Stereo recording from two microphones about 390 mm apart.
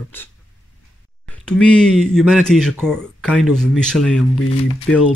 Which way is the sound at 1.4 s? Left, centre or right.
Centre.